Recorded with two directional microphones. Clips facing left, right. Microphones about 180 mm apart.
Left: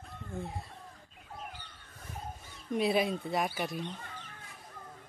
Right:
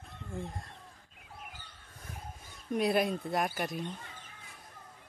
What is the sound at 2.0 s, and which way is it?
Speech, centre (ahead or behind).